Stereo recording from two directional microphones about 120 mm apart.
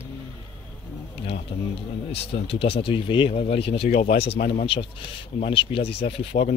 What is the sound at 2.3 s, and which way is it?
Speech, 55° left (ahead or behind).